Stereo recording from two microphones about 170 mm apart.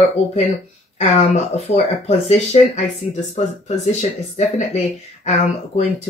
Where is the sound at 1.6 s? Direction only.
40° left (ahead or behind).